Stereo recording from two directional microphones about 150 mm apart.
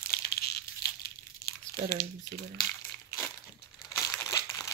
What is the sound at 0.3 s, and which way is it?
Crushing, 90° left.